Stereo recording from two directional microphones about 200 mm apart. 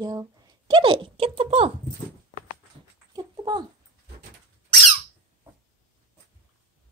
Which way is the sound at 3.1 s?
20° right (ahead or behind).